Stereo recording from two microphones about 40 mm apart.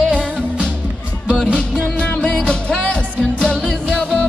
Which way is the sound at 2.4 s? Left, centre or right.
Left.